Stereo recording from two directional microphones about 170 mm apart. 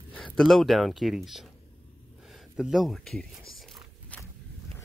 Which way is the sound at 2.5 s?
Centre (ahead or behind).